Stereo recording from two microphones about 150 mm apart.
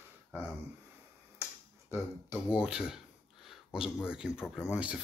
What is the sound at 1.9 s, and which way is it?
Speech, 15° right (ahead or behind).